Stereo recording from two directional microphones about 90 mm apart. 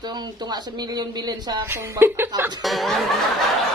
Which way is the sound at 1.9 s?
25° right (ahead or behind).